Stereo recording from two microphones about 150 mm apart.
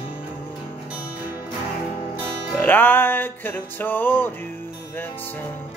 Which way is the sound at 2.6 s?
15° left (ahead or behind).